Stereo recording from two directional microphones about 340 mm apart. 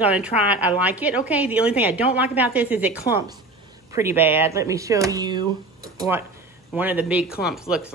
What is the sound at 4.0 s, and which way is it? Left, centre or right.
Speech, centre.